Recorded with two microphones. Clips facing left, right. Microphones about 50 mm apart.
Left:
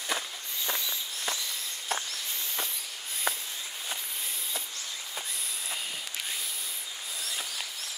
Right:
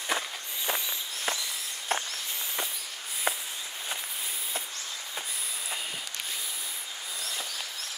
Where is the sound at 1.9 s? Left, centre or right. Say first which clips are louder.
Right 3 dB; right.